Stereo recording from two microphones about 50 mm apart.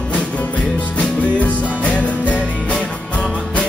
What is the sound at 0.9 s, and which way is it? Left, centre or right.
Music, left.